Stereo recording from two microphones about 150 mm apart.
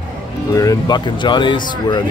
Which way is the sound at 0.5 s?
25° left (ahead or behind).